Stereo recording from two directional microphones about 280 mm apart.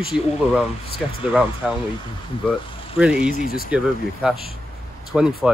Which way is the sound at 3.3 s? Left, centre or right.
Left.